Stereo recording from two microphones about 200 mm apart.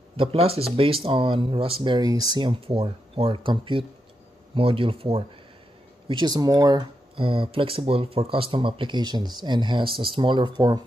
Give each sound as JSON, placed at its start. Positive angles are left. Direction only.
{"t": 0.2, "sound": "speech", "side_deg": -30}